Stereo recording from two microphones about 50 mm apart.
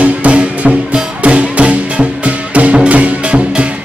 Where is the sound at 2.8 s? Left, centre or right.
Right.